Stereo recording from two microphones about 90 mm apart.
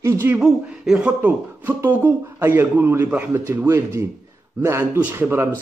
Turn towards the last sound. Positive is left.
turn(degrees=-30)  # may be behind; listen again after turning